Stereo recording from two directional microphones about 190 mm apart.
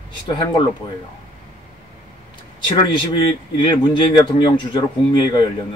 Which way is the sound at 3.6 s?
25° left (ahead or behind).